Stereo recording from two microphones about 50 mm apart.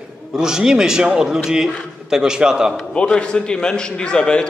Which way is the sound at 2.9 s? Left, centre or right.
Centre.